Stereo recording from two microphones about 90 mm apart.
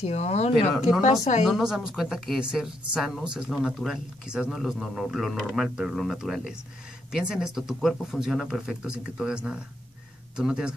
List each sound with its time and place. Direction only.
0.0 s speech: 90° left
0.8 s speech: 5° right (ahead or behind)